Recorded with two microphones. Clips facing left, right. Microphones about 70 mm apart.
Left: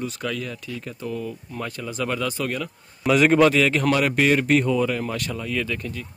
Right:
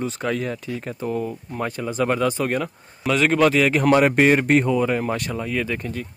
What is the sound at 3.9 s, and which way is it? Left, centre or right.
Speech, right.